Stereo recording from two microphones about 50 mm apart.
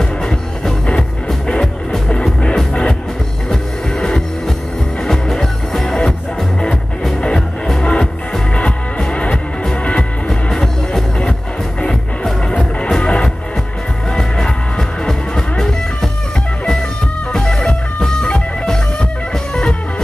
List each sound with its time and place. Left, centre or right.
0.0 s music: centre
7.2 s music: centre
17.3 s music: centre